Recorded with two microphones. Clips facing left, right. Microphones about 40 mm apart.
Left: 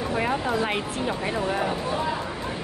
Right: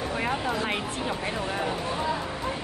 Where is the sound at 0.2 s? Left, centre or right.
Centre.